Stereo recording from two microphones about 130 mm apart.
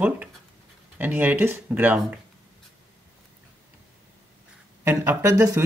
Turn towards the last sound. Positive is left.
turn(degrees=-25)  # may be behind; listen again after turning